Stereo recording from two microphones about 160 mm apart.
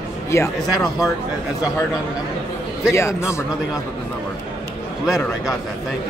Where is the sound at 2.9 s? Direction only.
15° left (ahead or behind).